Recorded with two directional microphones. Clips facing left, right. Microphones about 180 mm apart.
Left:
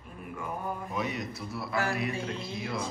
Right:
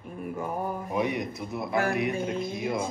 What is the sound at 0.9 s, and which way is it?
Speech, 20° right (ahead or behind).